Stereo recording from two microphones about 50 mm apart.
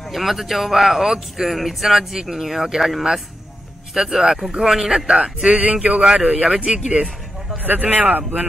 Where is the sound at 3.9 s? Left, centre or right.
Centre; by 6.0 s right.